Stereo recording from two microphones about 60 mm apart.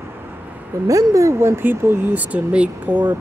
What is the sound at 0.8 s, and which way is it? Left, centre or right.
Speech, right.